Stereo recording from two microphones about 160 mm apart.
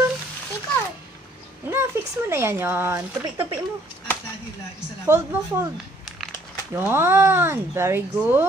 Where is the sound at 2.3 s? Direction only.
15° right (ahead or behind).